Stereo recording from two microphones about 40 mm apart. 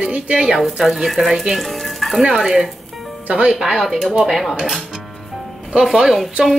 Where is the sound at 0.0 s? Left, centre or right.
Right.